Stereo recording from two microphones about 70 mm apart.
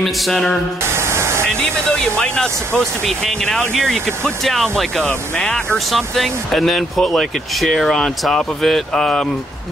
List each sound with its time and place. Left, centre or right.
0.0 s speech: centre
0.9 s static: right
1.9 s speech: centre